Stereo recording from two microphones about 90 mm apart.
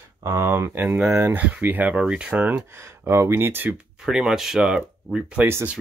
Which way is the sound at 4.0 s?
5° right (ahead or behind).